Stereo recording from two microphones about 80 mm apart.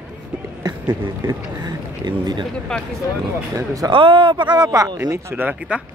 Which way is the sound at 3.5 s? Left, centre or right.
Right.